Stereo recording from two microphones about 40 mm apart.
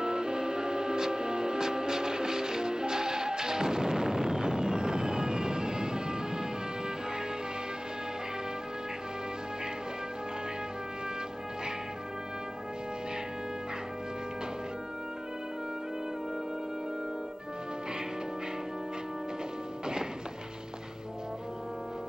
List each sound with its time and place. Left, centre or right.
0.0 s music: centre